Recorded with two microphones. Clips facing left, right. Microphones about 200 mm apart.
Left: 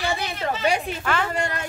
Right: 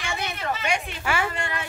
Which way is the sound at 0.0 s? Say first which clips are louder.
Left 4 dB; 35° left (ahead or behind).